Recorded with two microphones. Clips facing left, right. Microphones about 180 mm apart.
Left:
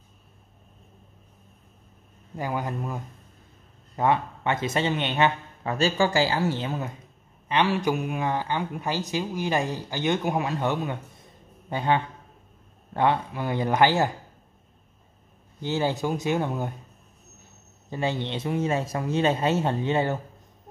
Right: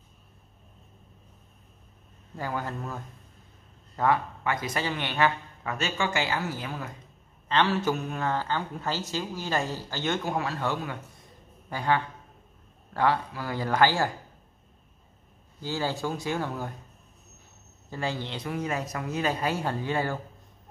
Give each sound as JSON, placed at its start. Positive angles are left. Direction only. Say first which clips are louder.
{"t": 2.3, "sound": "speech", "louder": "left 3 dB", "side_deg": 15}
{"t": 7.4, "sound": "speech", "louder": "left 2 dB", "side_deg": 15}
{"t": 15.6, "sound": "speech", "louder": "left 4 dB", "side_deg": 20}
{"t": 17.8, "sound": "speech", "louder": "left 4 dB", "side_deg": 20}